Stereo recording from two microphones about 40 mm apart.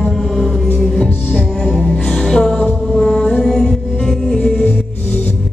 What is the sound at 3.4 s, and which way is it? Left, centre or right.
Music, centre.